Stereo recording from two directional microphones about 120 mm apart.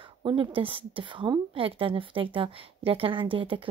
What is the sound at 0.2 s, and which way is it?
Speech, 45° right (ahead or behind).